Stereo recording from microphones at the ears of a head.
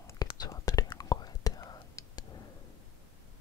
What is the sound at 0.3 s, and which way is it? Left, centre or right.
Whispering, left.